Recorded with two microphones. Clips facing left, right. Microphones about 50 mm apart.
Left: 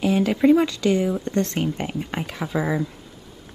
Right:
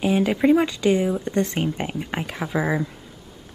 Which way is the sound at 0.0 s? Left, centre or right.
Centre.